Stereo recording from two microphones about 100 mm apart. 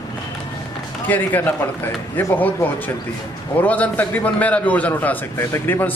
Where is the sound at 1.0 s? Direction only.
20° left (ahead or behind).